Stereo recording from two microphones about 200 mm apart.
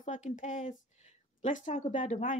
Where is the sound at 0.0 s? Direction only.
40° left (ahead or behind).